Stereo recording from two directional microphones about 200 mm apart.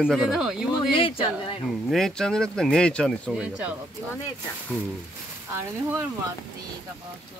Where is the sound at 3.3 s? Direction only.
5° right (ahead or behind).